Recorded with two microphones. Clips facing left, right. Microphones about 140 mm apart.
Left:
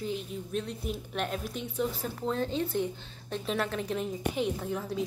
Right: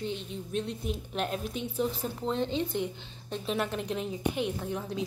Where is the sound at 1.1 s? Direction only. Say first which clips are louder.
Right 1 dB; 30° right (ahead or behind).